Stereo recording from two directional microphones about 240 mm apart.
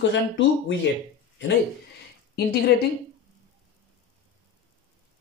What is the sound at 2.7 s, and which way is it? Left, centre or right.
Speech, left.